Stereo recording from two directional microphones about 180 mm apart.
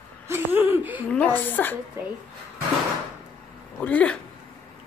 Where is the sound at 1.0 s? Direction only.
10° left (ahead or behind).